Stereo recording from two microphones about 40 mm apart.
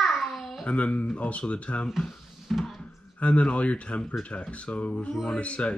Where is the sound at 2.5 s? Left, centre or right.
Centre.